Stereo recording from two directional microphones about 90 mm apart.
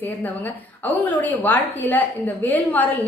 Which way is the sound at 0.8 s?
20° left (ahead or behind).